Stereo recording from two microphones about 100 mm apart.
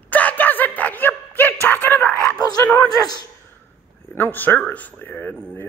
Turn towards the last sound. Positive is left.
turn(degrees=20)  # may be behind; listen again after turning